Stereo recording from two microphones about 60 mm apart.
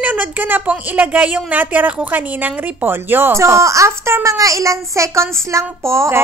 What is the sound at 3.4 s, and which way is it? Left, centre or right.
Speech, right.